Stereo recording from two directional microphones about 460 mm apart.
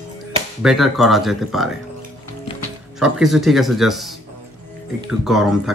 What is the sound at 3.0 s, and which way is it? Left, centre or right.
Speech, centre.